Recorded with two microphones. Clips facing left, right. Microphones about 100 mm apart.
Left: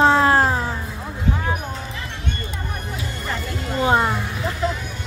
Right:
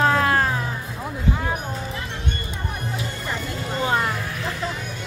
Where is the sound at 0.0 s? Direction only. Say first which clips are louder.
Left 4 dB; 30° left (ahead or behind).